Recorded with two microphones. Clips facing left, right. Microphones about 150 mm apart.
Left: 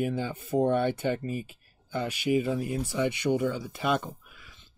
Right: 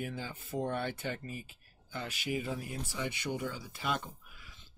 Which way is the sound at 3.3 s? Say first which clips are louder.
Left 10 dB; 60° left (ahead or behind).